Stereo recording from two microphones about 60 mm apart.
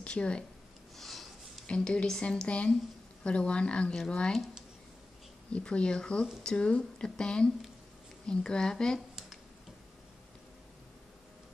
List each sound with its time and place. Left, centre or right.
0.0 s speech: centre
0.9 s a sound: centre
1.7 s a woman's voice: centre
5.5 s speech: centre